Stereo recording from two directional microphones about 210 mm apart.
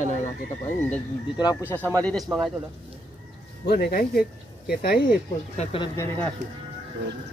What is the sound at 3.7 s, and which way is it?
Speech, 45° left (ahead or behind).